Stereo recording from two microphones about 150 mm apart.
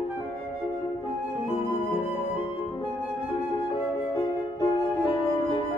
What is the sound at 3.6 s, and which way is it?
Music, 25° left (ahead or behind).